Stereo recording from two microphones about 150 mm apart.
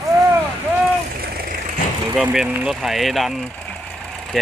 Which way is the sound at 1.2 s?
90° right.